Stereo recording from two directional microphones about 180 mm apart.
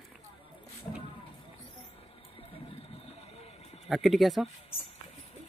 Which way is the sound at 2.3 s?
30° left (ahead or behind).